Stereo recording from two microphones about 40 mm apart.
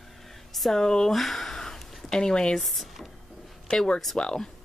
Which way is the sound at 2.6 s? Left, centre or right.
Centre.